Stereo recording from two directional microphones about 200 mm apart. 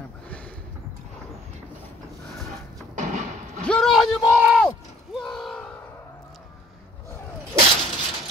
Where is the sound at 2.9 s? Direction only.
35° right (ahead or behind).